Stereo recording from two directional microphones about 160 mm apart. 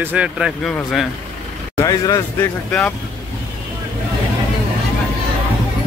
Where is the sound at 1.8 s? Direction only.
20° left (ahead or behind).